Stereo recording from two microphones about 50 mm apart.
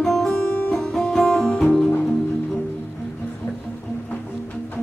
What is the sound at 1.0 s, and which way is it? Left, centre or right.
Music, centre.